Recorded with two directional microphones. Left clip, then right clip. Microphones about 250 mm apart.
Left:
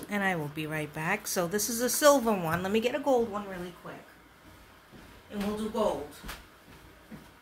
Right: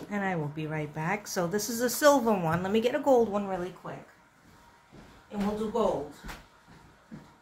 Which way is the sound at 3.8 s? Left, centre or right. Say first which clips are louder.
Right 3 dB; right.